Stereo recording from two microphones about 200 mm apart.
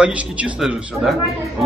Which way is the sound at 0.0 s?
5° right (ahead or behind).